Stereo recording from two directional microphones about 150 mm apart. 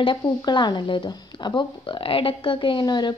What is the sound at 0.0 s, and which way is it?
Speech, 30° left (ahead or behind).